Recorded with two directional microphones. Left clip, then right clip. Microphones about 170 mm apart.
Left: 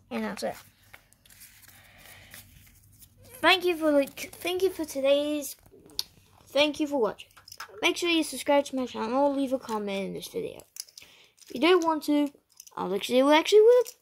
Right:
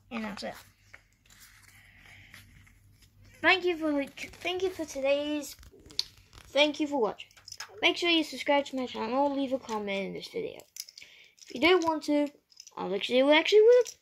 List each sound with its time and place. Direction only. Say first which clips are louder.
0.1 s speech: left 5 dB; 15° left (ahead or behind)
3.3 s speech: left 3 dB; 20° left (ahead or behind)
6.5 s speech: left 1 dB; 15° left (ahead or behind)
7.4 s a sound: left 2 dB; 60° left (ahead or behind)
7.8 s speech: even; 15° left (ahead or behind)
10.6 s typing: left 1 dB; 60° left (ahead or behind)
11.0 s typing: even; 20° left (ahead or behind)
11.4 s speech: left 2 dB; 20° left (ahead or behind)
12.3 s a sound: left 3 dB; 55° left (ahead or behind)
12.7 s speech: left 2 dB; 20° left (ahead or behind)